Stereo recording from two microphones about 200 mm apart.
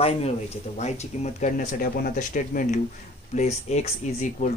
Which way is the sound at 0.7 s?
35° left (ahead or behind).